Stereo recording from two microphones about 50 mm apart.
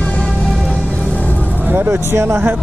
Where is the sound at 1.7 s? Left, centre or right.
Right.